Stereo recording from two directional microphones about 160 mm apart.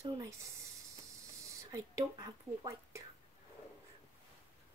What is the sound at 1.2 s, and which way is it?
Speech, 20° right (ahead or behind).